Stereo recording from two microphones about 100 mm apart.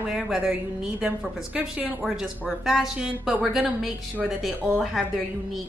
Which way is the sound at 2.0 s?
Centre (ahead or behind).